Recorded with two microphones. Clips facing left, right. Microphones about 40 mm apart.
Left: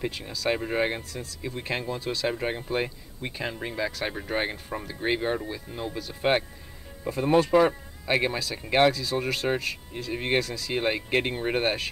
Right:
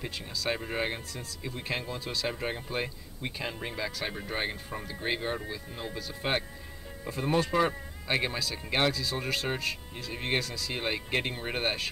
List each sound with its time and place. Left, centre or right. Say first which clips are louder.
0.0 s speech: left 5 dB; centre
10.7 s speech: left 6 dB; centre